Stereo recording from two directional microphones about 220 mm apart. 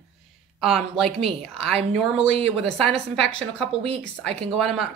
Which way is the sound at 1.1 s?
25° right (ahead or behind).